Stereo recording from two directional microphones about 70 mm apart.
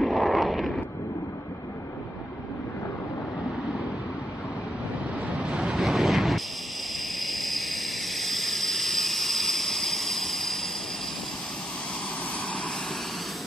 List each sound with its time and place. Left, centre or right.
0.0 s a sound: centre
5.3 s waves: centre
5.8 s vehicle: centre